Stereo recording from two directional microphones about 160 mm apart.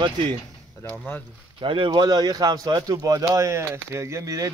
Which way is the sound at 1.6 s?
30° right (ahead or behind).